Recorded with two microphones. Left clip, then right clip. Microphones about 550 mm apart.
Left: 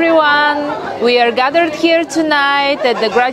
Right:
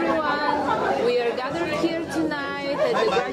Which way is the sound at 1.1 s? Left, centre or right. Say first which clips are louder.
Left 12 dB; left.